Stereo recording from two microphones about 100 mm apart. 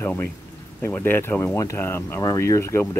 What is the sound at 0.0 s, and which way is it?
Speech, 15° left (ahead or behind).